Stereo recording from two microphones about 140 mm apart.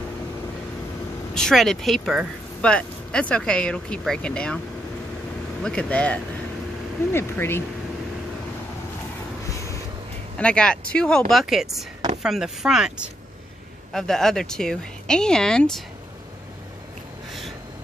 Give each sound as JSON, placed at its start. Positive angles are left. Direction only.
{"t": 1.3, "sound": "speech", "side_deg": 5}
{"t": 5.6, "sound": "speech", "side_deg": 10}
{"t": 10.3, "sound": "speech", "side_deg": 5}